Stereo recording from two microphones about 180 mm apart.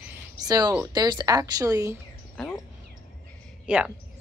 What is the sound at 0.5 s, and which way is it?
Speech, 25° right (ahead or behind).